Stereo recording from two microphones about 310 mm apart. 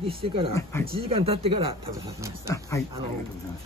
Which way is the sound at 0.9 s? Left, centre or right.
Centre.